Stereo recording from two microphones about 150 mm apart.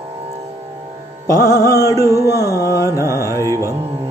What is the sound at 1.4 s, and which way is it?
Mantra, 20° left (ahead or behind).